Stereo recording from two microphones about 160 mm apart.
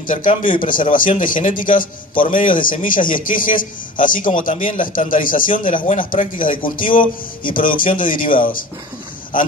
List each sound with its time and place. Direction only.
0.0 s a man's voice: 55° left (ahead or behind)